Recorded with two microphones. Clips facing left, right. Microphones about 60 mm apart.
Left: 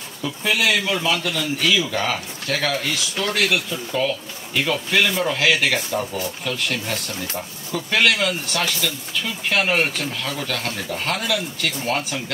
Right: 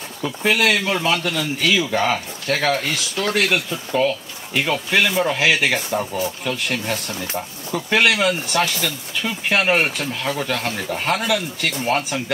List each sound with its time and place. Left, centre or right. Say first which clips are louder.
0.2 s speech: right 3 dB; right
4.6 s speech: right 1 dB; centre